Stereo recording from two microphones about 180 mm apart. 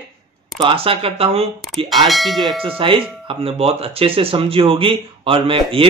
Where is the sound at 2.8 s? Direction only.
30° right (ahead or behind).